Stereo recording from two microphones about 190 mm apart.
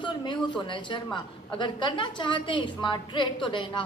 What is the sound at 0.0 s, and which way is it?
A woman's voice, 25° left (ahead or behind).